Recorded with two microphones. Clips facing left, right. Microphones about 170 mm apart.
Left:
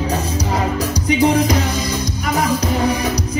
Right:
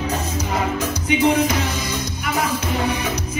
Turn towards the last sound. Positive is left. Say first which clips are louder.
# left 4 dB
turn(degrees=35)  # may be behind; listen again after turning